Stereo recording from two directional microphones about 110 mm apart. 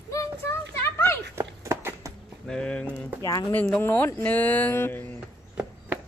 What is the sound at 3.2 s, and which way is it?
Speech, 35° left (ahead or behind).